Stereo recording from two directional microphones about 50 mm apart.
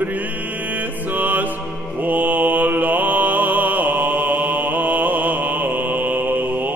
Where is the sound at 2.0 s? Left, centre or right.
Right.